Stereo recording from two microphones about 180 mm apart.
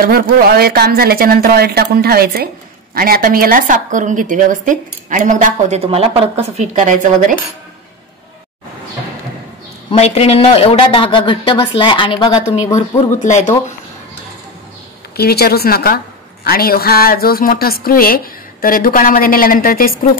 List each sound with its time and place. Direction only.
0.0 s speech: 60° right (ahead or behind)
9.8 s speech: 35° left (ahead or behind)
12.7 s speech: 40° left (ahead or behind)
15.1 s a woman's voice: 60° left (ahead or behind)